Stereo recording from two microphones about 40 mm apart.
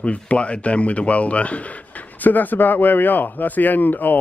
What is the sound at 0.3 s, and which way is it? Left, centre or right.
Speech, left.